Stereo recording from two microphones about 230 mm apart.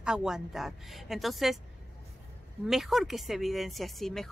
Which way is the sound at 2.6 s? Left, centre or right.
Centre.